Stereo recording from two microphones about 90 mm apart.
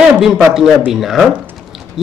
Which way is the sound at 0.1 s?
Centre (ahead or behind).